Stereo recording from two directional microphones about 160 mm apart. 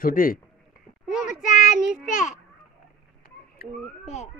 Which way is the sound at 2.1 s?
50° left (ahead or behind).